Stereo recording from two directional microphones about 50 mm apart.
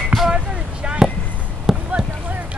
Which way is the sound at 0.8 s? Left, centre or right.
Centre.